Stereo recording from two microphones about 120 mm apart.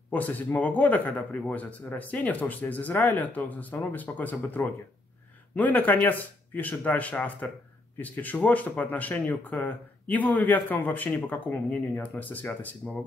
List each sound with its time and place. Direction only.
0.1 s speech: 15° left (ahead or behind)